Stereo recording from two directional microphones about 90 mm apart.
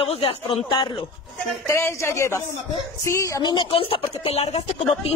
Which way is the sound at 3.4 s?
65° left (ahead or behind).